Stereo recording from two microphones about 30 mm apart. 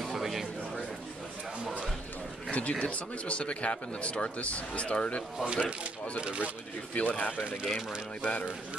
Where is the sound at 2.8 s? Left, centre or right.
Left.